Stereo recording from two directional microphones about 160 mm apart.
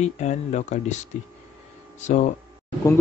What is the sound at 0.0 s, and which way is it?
Speech, 45° left (ahead or behind).